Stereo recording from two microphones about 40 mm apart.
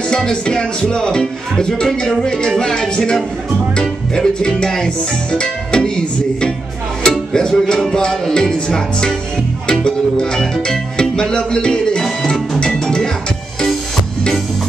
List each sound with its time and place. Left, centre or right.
0.1 s music: left
12.0 s music: centre